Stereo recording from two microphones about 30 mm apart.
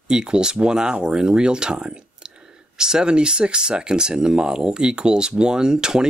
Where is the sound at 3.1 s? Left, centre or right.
Right.